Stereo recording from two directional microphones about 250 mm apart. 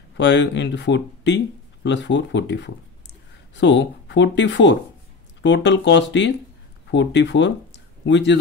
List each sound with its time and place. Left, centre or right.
0.2 s speech: left